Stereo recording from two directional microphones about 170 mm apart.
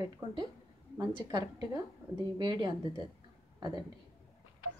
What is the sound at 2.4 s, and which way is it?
A woman's voice, 25° right (ahead or behind).